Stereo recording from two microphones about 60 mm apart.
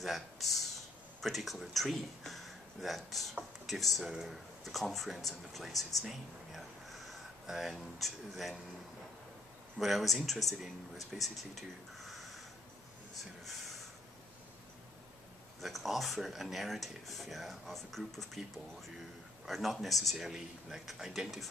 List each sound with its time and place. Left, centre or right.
0.0 s a man's voice: centre
5.9 s a sound: centre
9.8 s speech: centre
15.6 s speech: centre